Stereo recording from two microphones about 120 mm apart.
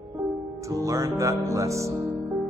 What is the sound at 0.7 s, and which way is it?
A man's voice, 30° right (ahead or behind).